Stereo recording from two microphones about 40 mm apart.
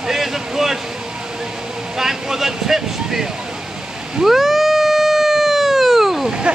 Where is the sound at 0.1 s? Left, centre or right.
Centre.